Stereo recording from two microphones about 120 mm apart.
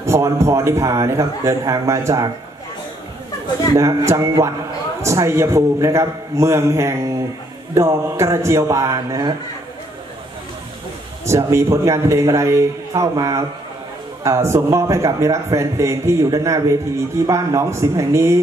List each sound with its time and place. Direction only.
0.0 s a man's voice: 25° right (ahead or behind)
3.7 s a man's voice: 25° right (ahead or behind)
11.2 s a man's voice: 25° right (ahead or behind)